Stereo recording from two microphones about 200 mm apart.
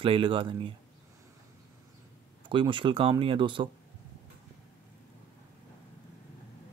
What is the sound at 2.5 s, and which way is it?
Speech, 25° right (ahead or behind).